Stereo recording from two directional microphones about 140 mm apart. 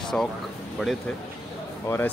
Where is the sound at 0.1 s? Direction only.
10° left (ahead or behind).